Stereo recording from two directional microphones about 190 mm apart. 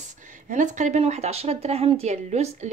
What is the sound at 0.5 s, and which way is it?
Speech, 40° right (ahead or behind).